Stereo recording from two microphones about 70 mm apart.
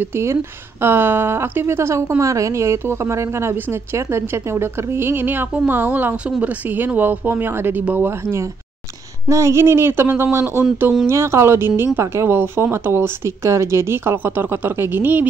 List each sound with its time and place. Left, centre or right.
0.0 s a woman's voice: right
5.5 s a woman's voice: centre
9.3 s a woman's voice: right
11.1 s a woman's voice: right